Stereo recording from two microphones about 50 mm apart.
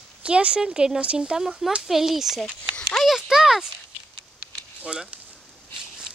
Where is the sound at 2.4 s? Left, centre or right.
Centre.